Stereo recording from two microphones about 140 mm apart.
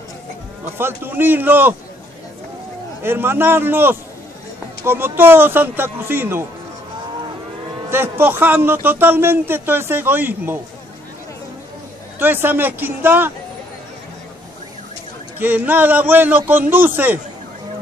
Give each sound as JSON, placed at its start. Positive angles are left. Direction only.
{"t": 0.7, "sound": "a man's voice", "side_deg": -15}
{"t": 3.0, "sound": "a man's voice", "side_deg": -15}
{"t": 7.9, "sound": "a man's voice", "side_deg": -15}
{"t": 12.2, "sound": "a man's voice", "side_deg": -15}
{"t": 15.3, "sound": "a man's voice", "side_deg": -15}